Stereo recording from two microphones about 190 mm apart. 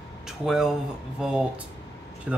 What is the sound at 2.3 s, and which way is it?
Speech, 5° right (ahead or behind).